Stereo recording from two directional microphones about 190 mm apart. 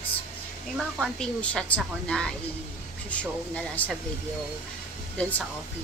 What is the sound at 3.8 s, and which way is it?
Speech, 10° left (ahead or behind).